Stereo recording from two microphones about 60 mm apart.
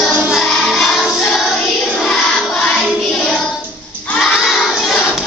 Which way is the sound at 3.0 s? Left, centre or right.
Centre.